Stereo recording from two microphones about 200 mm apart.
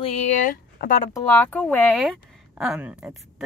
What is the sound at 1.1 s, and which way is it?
Speech, 10° left (ahead or behind).